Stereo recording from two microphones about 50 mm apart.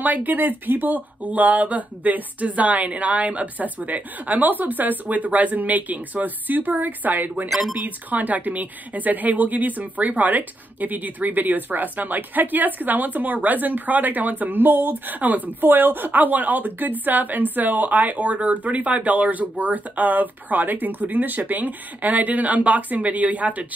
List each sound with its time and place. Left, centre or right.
0.0 s speech: right